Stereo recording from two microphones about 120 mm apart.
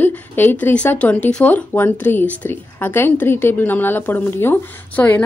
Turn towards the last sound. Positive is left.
turn(degrees=15)  # may be behind; listen again after turning